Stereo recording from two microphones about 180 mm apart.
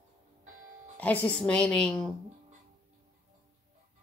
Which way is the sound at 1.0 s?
10° left (ahead or behind).